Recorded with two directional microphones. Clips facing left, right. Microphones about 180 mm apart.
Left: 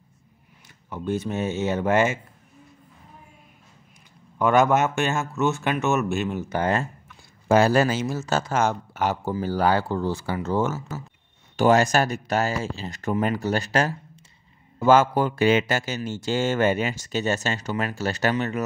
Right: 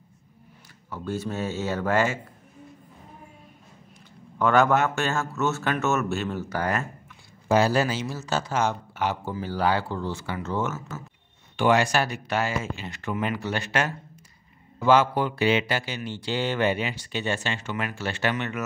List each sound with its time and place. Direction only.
0.8 s speech: 20° left (ahead or behind)
4.4 s a man's voice: 15° left (ahead or behind)
7.4 s speech: 50° left (ahead or behind); by 18.6 s 35° left (ahead or behind)